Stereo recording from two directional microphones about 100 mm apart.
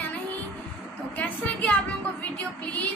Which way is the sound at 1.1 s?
15° left (ahead or behind).